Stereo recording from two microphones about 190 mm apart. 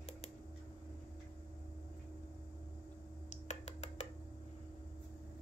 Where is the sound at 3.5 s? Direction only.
35° left (ahead or behind).